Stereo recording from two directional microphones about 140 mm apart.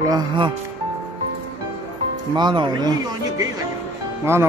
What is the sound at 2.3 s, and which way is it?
Speech, 30° right (ahead or behind).